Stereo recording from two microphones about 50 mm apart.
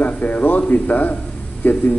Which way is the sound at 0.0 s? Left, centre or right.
Left.